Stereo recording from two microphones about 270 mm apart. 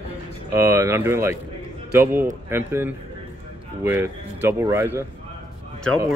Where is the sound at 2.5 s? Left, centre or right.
Centre.